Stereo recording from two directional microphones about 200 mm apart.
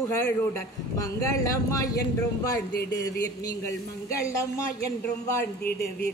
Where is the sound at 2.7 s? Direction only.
55° left (ahead or behind).